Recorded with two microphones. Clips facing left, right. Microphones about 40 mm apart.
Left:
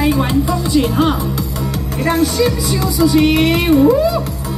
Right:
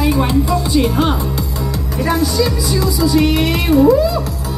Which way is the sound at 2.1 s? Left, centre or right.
Left.